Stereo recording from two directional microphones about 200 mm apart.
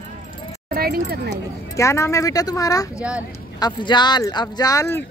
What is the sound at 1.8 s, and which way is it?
Speech, 15° left (ahead or behind).